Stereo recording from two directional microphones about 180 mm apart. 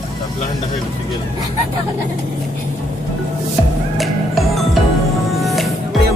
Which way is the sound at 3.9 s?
Centre (ahead or behind).